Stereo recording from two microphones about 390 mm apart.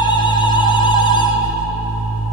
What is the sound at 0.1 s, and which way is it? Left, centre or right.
Music, centre.